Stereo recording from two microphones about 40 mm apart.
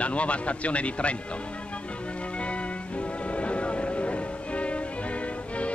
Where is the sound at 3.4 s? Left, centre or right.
Left.